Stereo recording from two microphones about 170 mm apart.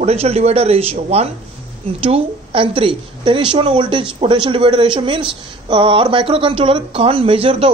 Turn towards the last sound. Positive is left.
turn(degrees=-35)  # may be behind; listen again after turning